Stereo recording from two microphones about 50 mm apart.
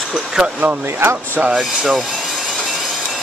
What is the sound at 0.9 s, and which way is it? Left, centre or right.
Speech, right.